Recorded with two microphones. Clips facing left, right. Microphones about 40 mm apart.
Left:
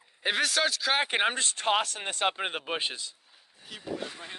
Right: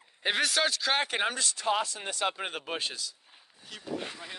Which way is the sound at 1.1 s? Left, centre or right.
Left.